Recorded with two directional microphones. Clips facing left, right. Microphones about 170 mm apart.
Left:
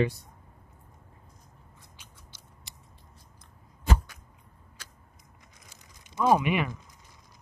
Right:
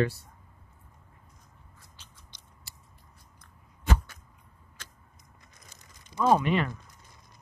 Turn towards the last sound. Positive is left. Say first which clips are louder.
# even
turn(degrees=10)  # may be behind; listen again after turning